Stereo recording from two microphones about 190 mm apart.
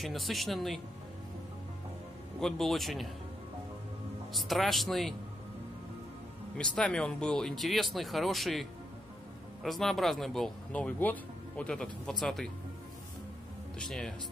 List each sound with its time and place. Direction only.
0.0 s speech: centre (ahead or behind)
2.4 s speech: centre (ahead or behind)
4.3 s speech: centre (ahead or behind)
6.6 s speech: 5° left (ahead or behind)
13.7 s speech: 5° left (ahead or behind)